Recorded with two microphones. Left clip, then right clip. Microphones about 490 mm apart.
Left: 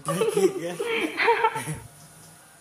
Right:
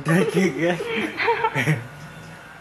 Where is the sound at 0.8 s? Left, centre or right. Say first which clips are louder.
Even; centre.